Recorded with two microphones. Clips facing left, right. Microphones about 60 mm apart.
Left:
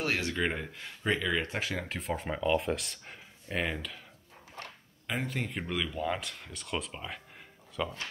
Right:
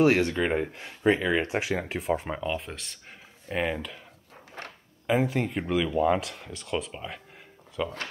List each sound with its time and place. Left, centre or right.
0.3 s speech: centre
0.7 s speech: centre
5.0 s speech: centre
5.9 s speech: centre
6.1 s speech: centre